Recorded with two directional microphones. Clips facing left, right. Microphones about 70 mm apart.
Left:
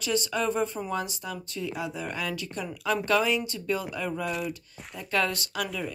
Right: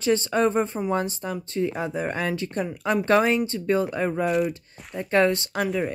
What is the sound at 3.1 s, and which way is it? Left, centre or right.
Speech, right.